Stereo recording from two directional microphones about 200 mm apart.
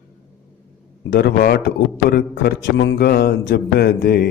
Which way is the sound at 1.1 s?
55° left (ahead or behind).